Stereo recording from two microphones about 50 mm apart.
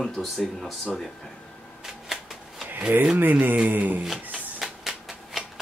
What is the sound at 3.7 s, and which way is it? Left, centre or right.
Speech, right.